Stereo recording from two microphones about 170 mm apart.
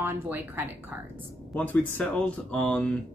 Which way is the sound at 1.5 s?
10° left (ahead or behind).